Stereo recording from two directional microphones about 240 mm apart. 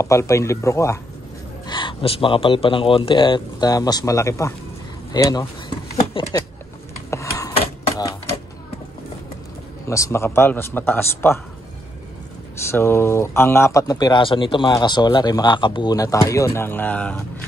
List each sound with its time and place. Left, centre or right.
0.0 s a man's voice: centre
6.2 s a sound: left
9.8 s speech: centre
12.7 s speech: centre